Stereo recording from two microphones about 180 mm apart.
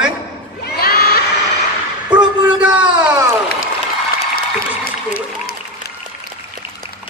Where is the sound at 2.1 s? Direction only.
25° right (ahead or behind).